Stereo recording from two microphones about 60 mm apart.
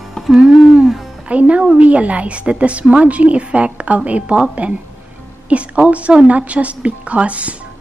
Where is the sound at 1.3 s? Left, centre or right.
Right.